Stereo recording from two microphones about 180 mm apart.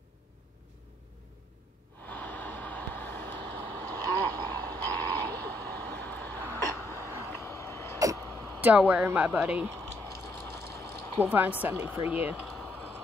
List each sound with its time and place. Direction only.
2.0 s vehicle: 10° left (ahead or behind)
6.9 s a sound: 15° right (ahead or behind)
7.2 s vehicle: 15° left (ahead or behind)
8.5 s speech: 10° right (ahead or behind)
10.0 s vehicle: 15° left (ahead or behind)
11.1 s speech: 10° right (ahead or behind)
12.1 s a sound: 10° right (ahead or behind)